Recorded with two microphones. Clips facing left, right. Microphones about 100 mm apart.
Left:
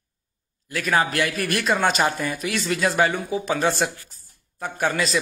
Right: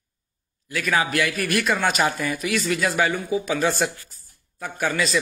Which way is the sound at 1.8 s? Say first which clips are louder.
Left 2 dB; 5° right (ahead or behind).